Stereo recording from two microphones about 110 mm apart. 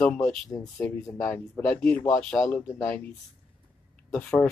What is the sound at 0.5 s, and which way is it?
Speech, 35° left (ahead or behind).